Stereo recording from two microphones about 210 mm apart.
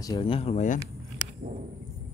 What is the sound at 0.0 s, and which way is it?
Speech, 20° left (ahead or behind).